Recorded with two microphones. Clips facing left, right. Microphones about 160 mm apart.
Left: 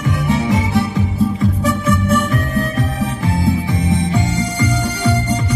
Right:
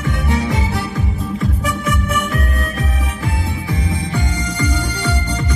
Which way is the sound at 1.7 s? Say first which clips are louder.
Left 7 dB; 30° left (ahead or behind).